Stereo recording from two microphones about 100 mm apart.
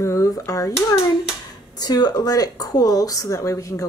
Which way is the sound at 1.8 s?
40° left (ahead or behind).